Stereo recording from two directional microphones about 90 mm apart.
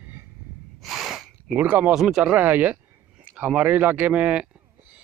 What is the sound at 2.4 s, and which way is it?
Speech, 20° right (ahead or behind).